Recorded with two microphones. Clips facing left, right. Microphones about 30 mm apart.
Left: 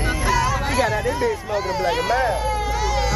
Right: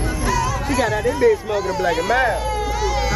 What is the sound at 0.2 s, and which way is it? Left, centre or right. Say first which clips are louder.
Music: left 1 dB; centre.